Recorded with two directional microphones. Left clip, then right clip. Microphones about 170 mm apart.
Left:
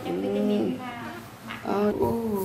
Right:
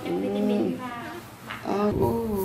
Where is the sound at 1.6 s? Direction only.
Centre (ahead or behind).